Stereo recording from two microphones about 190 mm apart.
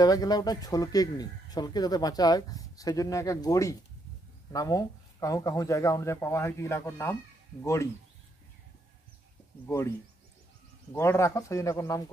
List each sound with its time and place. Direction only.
0.0 s speech: 20° left (ahead or behind)
9.7 s speech: 15° left (ahead or behind)